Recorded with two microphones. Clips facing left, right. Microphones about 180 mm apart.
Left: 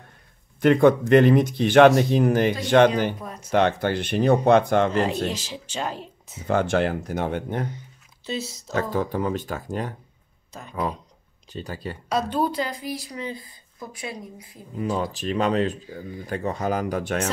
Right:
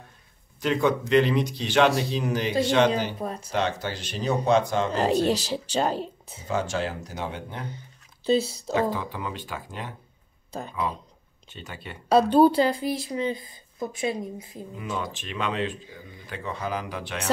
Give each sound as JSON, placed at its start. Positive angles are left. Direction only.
{"t": 0.6, "sound": "speech", "side_deg": 55}
{"t": 3.2, "sound": "speech", "side_deg": -30}
{"t": 3.5, "sound": "speech", "side_deg": 55}
{"t": 5.0, "sound": "speech", "side_deg": -35}
{"t": 6.4, "sound": "speech", "side_deg": 60}
{"t": 8.3, "sound": "speech", "side_deg": -30}
{"t": 8.9, "sound": "speech", "side_deg": 45}
{"t": 11.4, "sound": "speech", "side_deg": 35}
{"t": 12.1, "sound": "a woman's voice", "side_deg": -30}
{"t": 14.8, "sound": "speech", "side_deg": 35}